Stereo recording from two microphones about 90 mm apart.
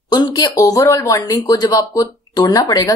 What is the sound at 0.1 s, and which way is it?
Speech, 50° left (ahead or behind).